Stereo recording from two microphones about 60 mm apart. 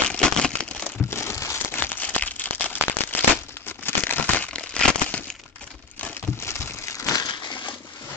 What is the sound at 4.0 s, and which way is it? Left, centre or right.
Crumpling, left.